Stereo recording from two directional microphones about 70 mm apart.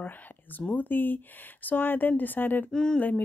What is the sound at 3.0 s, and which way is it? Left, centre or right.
Speech, left.